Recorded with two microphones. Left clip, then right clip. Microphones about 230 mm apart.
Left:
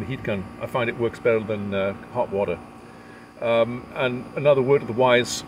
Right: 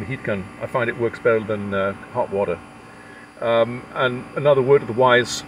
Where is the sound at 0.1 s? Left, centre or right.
Centre.